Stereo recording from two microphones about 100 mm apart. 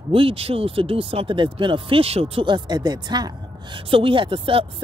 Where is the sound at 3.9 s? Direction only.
60° right (ahead or behind).